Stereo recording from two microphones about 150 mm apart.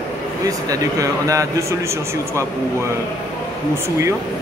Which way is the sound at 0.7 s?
20° right (ahead or behind).